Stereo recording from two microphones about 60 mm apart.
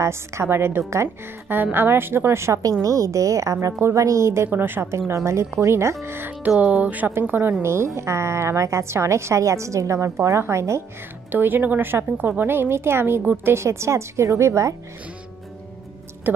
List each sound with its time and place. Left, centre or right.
0.0 s a woman's voice: right
1.0 s a woman's voice: right
2.8 s a woman's voice: right
4.5 s a woman's voice: right
4.9 s a woman's voice: right
6.0 s a woman's voice: right
6.7 s a woman's voice: right
7.6 s a woman's voice: right
11.3 s a woman's voice: right
16.3 s music: right